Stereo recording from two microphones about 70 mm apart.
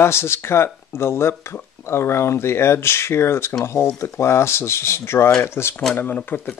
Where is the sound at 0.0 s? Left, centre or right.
Left.